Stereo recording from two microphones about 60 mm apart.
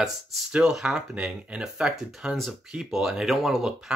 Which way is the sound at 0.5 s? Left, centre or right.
Centre.